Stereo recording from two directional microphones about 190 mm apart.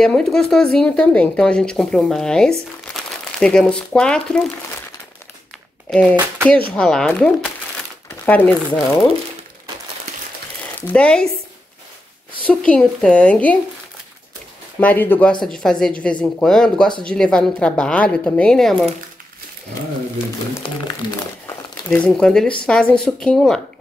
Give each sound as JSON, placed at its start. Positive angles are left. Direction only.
{"t": 0.0, "sound": "speech", "side_deg": 5}
{"t": 5.9, "sound": "speech", "side_deg": 5}
{"t": 6.1, "sound": "speech", "side_deg": -10}
{"t": 6.7, "sound": "a woman's voice", "side_deg": 5}
{"t": 10.9, "sound": "speech", "side_deg": 5}
{"t": 12.4, "sound": "a woman's voice", "side_deg": 5}
{"t": 14.8, "sound": "a woman's voice", "side_deg": 10}
{"t": 21.0, "sound": "speech", "side_deg": 25}
{"t": 21.9, "sound": "speech", "side_deg": 5}